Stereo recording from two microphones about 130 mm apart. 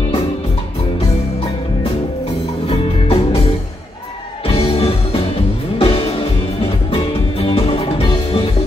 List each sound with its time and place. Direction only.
2.7 s music: 45° left (ahead or behind)
4.5 s music: 50° left (ahead or behind)
7.4 s music: 50° left (ahead or behind)